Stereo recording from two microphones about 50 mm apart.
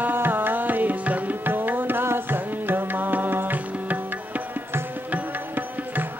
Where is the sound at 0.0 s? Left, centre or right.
Right.